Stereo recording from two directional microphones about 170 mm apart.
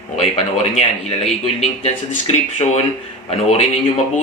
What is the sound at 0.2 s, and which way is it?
A man's voice, 40° left (ahead or behind).